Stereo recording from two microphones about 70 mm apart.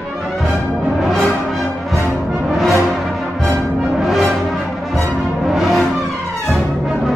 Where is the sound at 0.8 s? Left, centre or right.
Centre.